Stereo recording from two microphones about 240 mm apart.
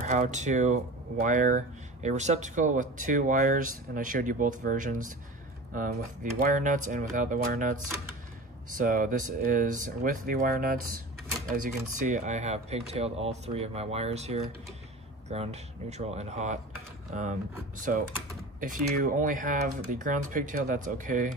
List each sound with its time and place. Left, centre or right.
0.0 s speech: right
6.4 s speech: right